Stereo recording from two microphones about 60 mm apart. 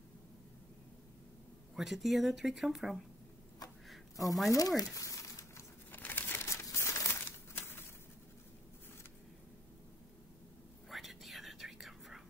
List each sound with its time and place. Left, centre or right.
1.8 s speech: centre
4.5 s speech: left
4.9 s crumpling: left
5.9 s crumpling: left
6.4 s crumpling: left
7.1 s crumpling: left
10.9 s whispering: centre